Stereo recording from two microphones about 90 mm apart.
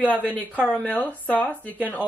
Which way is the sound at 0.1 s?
15° left (ahead or behind).